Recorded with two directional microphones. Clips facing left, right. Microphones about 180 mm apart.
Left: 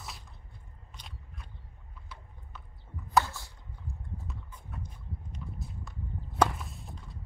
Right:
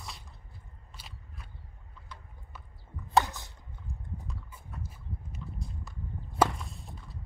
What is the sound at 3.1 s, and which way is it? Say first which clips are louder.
Chopping: right 1 dB; 20° right (ahead or behind).